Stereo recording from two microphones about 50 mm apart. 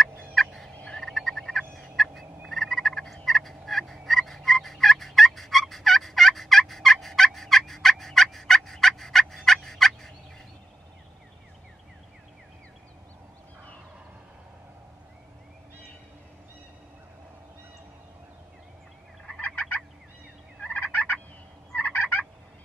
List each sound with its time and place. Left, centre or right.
0.0 s fowl: centre
2.5 s frog: centre
3.3 s gobble: centre
19.4 s gobble: left